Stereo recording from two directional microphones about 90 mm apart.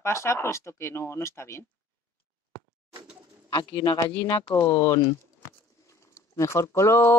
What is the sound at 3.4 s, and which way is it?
Speech, 50° left (ahead or behind).